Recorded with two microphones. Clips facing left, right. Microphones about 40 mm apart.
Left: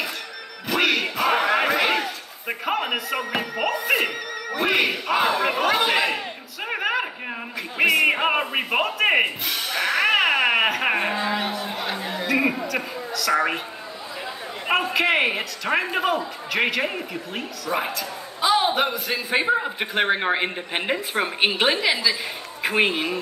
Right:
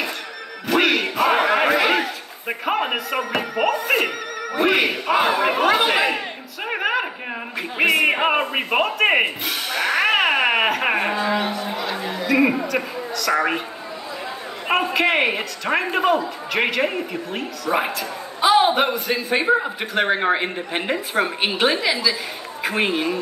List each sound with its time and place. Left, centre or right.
0.7 s music: centre
1.0 s a sound: centre
3.5 s a man's voice: centre
7.5 s a man's voice: centre
9.4 s music: centre
11.2 s a woman's voice: centre
14.7 s speech: centre
17.6 s a woman's voice: centre
18.9 s speech: centre
19.8 s speech: centre